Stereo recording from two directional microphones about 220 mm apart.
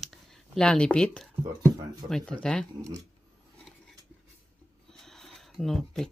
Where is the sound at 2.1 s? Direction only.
5° left (ahead or behind).